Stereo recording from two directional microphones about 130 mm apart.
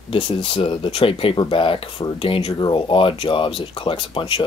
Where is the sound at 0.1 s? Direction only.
45° left (ahead or behind).